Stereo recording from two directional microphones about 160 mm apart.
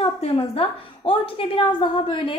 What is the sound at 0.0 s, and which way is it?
A woman's voice, 40° left (ahead or behind).